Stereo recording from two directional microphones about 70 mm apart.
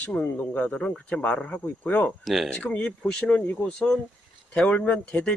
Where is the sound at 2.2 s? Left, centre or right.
Centre.